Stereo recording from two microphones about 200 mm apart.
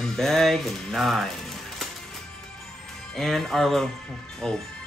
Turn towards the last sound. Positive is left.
turn(degrees=5)  # may be behind; listen again after turning